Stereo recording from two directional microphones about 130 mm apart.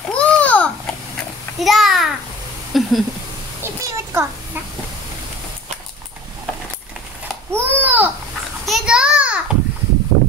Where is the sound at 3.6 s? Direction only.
20° right (ahead or behind).